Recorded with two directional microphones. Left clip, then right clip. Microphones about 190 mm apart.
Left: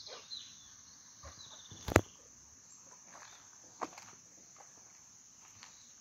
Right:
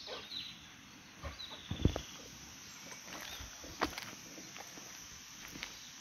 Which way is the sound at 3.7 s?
15° left (ahead or behind).